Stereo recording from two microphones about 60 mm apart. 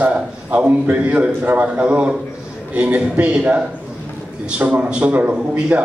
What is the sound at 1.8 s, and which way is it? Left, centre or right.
A man's voice, centre.